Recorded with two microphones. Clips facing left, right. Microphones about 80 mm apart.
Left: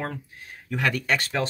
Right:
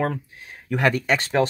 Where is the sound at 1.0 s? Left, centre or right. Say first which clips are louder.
Right 3 dB; right.